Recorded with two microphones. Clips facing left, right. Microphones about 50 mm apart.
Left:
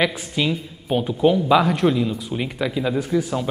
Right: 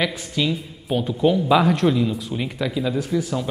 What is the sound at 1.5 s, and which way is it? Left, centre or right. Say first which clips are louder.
A man's voice: even; centre.